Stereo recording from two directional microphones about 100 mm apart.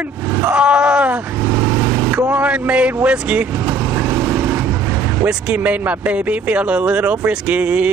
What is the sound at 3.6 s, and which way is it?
Vehicle, 25° right (ahead or behind).